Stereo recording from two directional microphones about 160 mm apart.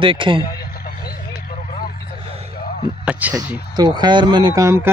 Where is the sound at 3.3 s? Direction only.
25° right (ahead or behind).